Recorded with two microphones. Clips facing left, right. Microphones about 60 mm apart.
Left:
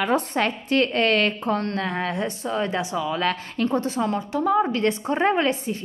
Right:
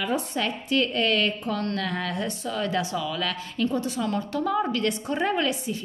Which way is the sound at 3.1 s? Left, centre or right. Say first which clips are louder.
Left 4 dB; left.